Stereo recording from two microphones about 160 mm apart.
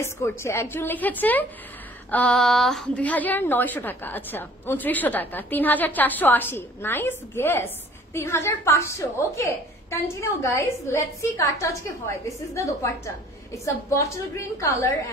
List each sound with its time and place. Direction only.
0.0 s a woman's voice: 15° left (ahead or behind)